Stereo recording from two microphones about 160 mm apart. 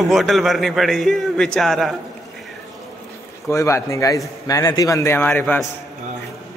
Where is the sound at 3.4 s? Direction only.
20° left (ahead or behind).